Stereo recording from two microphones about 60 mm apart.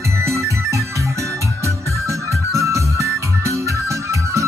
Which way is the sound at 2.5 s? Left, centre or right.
Right.